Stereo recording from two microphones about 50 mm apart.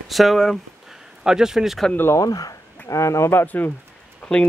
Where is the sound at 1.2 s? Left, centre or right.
Centre.